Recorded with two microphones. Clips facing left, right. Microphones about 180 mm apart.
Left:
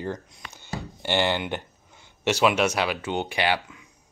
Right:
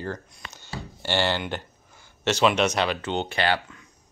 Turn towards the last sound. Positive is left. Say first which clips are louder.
# even
turn(degrees=10)  # may be behind; listen again after turning